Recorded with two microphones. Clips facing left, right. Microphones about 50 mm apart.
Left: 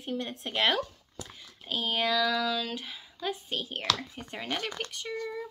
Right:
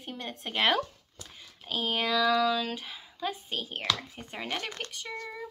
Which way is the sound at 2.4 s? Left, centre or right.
Right.